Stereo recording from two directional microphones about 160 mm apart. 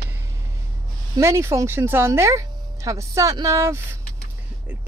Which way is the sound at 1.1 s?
20° right (ahead or behind).